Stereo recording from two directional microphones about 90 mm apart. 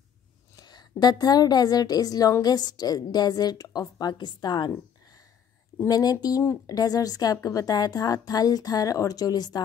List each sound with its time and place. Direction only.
0.6 s a woman's voice: 50° left (ahead or behind)
5.9 s a woman's voice: 45° left (ahead or behind)